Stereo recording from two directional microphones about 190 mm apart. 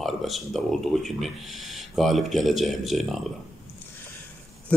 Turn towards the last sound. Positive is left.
turn(degrees=0)  # may be behind; listen again after turning